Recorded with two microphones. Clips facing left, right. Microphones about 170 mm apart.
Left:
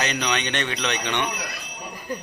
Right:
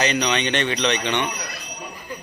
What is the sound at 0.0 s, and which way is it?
Speech, centre (ahead or behind).